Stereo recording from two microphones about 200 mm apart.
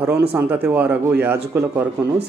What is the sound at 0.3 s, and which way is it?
Speech, 10° right (ahead or behind).